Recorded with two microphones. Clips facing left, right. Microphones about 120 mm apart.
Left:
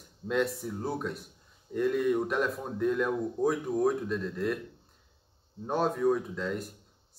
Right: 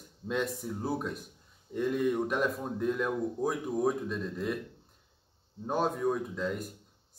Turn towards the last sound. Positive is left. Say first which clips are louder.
# even
turn(degrees=0)  # may be behind; listen again after turning